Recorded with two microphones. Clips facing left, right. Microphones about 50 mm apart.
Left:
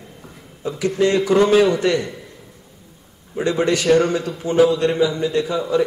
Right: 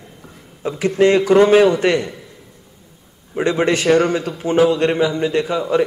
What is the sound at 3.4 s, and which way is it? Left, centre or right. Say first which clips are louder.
A man's voice: right 2 dB; right.